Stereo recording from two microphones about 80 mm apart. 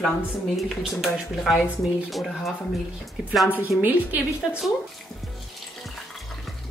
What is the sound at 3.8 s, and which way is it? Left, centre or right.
Speech, right.